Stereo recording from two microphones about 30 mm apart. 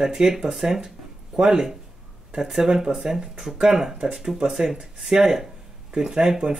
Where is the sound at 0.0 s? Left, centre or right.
Centre.